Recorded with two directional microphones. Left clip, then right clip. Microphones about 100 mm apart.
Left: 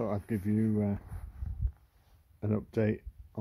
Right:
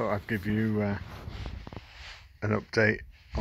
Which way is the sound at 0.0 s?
25° left (ahead or behind).